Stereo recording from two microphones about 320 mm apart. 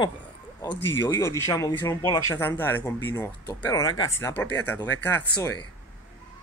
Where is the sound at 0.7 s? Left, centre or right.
Left.